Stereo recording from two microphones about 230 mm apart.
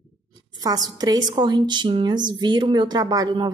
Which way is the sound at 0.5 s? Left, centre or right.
Centre.